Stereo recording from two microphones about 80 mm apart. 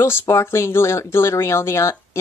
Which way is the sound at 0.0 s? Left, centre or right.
Left.